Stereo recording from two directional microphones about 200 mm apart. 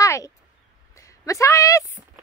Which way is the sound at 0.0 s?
15° left (ahead or behind).